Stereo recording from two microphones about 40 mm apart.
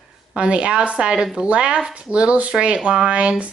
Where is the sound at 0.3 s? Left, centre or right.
Right.